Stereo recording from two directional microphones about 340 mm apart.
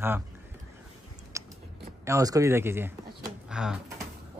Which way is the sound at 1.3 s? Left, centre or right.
Centre.